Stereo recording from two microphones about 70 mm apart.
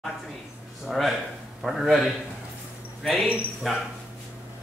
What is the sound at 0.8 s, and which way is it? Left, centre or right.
A man's voice, centre.